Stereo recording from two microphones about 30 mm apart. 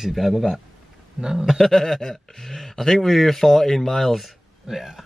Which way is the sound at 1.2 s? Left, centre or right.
Centre.